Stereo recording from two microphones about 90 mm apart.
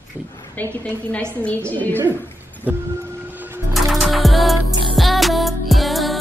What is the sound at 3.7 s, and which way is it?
Music, centre (ahead or behind).